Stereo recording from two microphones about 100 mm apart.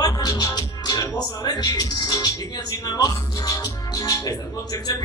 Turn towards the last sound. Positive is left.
turn(degrees=35)  # may be behind; listen again after turning